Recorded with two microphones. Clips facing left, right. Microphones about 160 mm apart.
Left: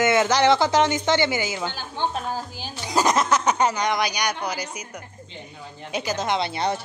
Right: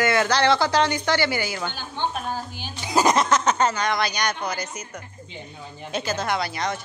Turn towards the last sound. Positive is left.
turn(degrees=30)  # may be behind; listen again after turning